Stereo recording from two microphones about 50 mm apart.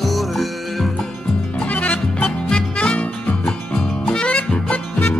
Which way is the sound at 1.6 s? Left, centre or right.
Left.